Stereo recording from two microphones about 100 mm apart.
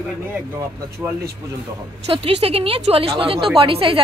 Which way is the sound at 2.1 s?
65° right (ahead or behind).